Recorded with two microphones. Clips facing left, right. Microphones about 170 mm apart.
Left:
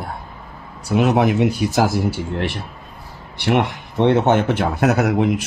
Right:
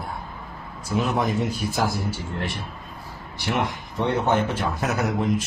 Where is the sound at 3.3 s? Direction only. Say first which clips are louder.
Left 7 dB; 70° left (ahead or behind).